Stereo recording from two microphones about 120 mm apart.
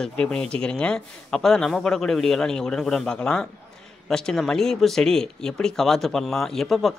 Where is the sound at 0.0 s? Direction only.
5° left (ahead or behind).